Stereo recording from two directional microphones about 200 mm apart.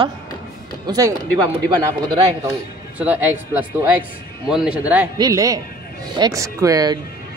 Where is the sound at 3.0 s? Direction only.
10° right (ahead or behind).